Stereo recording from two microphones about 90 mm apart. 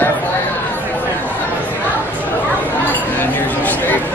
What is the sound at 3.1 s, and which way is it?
Chatter, 20° left (ahead or behind).